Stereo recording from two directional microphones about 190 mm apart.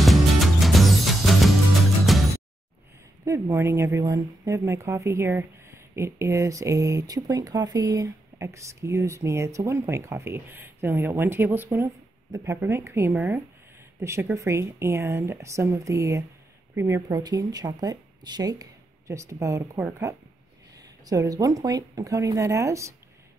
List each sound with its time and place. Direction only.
0.0 s music: centre (ahead or behind)
3.3 s speech: 15° right (ahead or behind)